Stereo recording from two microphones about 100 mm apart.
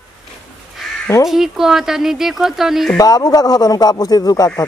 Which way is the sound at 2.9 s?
40° left (ahead or behind).